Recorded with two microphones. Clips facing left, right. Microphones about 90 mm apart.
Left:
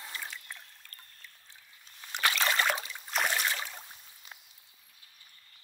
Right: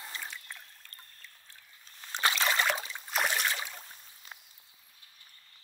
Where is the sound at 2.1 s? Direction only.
25° right (ahead or behind).